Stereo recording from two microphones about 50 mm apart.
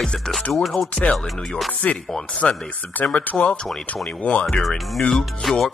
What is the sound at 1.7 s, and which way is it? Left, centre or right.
Music, left.